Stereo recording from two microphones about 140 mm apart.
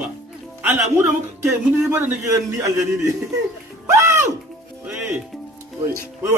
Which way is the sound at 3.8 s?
20° right (ahead or behind).